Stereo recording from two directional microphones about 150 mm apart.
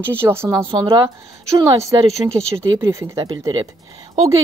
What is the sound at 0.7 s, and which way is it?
A woman's voice, 35° right (ahead or behind).